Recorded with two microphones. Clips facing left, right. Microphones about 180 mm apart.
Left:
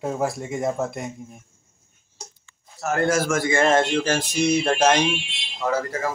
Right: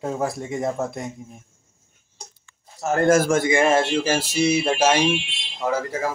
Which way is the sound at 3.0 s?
50° right (ahead or behind).